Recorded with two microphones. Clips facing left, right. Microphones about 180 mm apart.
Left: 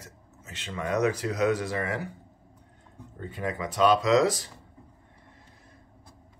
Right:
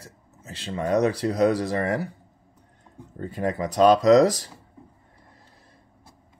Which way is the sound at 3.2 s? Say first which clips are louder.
Right 6 dB; 40° right (ahead or behind).